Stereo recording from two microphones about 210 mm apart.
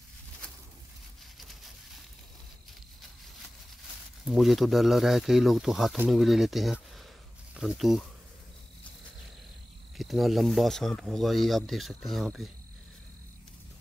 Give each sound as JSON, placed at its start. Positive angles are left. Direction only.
{"t": 1.4, "sound": "a sound", "side_deg": 0}
{"t": 4.3, "sound": "speech", "side_deg": 0}
{"t": 9.9, "sound": "speech", "side_deg": 0}